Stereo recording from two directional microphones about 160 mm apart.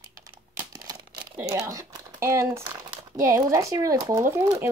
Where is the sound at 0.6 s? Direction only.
25° right (ahead or behind).